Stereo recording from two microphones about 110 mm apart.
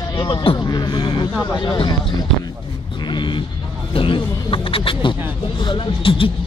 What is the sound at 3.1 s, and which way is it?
Vehicle, 45° left (ahead or behind).